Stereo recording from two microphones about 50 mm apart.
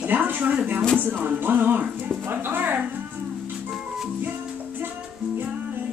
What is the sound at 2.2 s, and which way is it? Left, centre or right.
Music, right.